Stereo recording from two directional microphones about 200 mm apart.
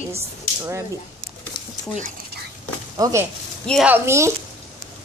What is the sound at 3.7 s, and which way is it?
Speech, 5° right (ahead or behind).